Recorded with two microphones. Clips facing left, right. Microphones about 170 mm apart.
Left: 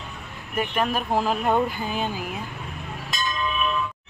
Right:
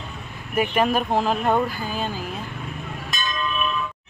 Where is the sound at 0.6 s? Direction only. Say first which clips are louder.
Right 4 dB; 5° right (ahead or behind).